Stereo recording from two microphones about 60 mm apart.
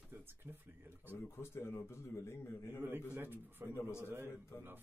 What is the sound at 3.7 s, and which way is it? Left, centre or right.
Speech, left.